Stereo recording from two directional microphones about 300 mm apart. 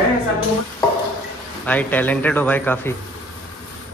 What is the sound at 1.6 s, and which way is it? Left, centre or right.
Speech, centre.